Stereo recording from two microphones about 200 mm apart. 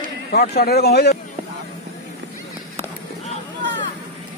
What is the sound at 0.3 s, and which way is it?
Speech, 50° left (ahead or behind).